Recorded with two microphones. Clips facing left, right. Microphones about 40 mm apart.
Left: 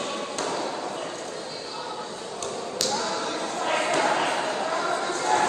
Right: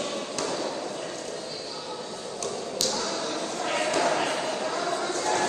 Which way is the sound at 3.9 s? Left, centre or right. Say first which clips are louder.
Even; left.